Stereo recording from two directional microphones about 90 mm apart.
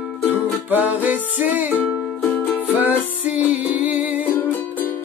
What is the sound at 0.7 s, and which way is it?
Music, 20° right (ahead or behind).